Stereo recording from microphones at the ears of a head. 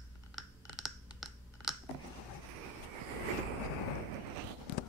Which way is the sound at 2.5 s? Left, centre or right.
Right.